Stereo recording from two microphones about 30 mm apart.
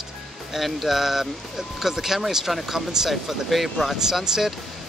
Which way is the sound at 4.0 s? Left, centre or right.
Centre.